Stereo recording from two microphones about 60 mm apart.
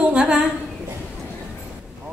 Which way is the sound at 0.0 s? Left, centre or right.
Centre.